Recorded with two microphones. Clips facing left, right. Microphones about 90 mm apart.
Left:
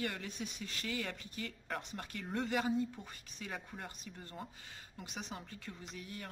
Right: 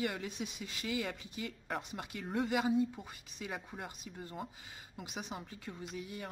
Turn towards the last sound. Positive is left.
turn(degrees=-10)  # may be behind; listen again after turning